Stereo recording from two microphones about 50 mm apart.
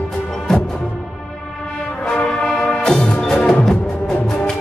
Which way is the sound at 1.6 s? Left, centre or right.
Left.